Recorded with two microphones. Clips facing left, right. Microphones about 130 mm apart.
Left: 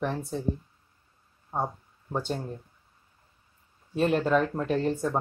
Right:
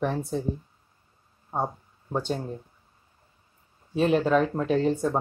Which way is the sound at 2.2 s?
Centre (ahead or behind).